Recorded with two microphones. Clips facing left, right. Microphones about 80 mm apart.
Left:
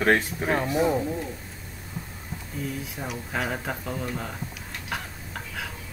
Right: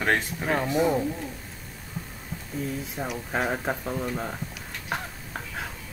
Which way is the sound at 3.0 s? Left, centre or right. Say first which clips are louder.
Right 3 dB; right.